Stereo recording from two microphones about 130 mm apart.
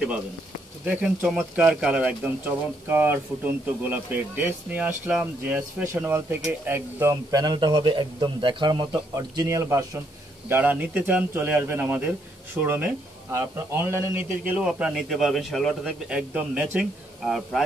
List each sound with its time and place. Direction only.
0.8 s speech: 10° right (ahead or behind)